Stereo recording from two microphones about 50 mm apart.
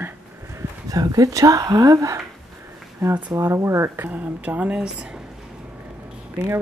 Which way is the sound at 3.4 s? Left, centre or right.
Right.